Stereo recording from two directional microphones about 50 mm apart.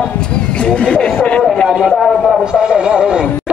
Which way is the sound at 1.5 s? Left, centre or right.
Centre.